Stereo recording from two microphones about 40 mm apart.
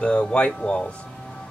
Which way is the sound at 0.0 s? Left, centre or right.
Left.